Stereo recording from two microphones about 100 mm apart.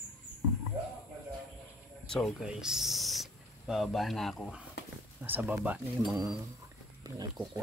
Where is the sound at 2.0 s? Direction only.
5° left (ahead or behind).